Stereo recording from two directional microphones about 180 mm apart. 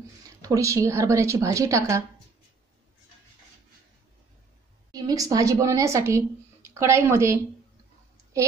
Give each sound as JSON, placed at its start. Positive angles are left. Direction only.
{"t": 0.4, "sound": "a woman's voice", "side_deg": -15}
{"t": 4.9, "sound": "speech", "side_deg": -20}